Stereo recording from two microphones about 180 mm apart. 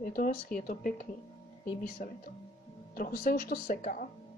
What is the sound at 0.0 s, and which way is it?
Speech, 50° left (ahead or behind).